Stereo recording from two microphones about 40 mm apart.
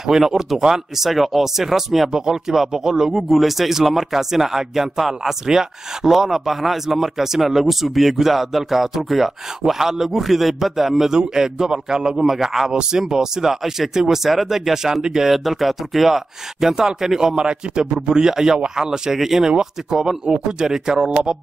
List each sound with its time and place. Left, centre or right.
0.0 s speech: centre